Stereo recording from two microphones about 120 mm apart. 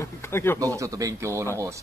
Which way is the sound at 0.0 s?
20° left (ahead or behind).